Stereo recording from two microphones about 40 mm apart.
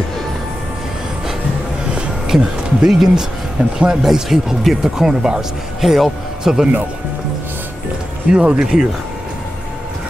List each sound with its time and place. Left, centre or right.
2.9 s speech: centre
3.5 s speech: right
4.0 s speech: centre
5.8 s speech: centre
6.4 s speech: centre
8.3 s speech: right